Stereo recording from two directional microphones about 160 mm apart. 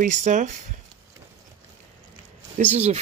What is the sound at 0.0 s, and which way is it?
Speech, 50° right (ahead or behind).